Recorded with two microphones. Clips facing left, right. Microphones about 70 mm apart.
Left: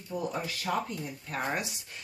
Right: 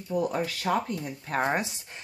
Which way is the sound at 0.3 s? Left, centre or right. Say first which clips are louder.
Right 5 dB; right.